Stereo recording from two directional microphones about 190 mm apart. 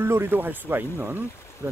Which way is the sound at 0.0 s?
15° right (ahead or behind).